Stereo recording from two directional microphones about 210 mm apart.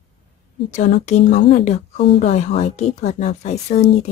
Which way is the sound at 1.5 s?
30° left (ahead or behind).